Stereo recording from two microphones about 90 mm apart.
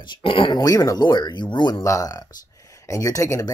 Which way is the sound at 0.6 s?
40° left (ahead or behind).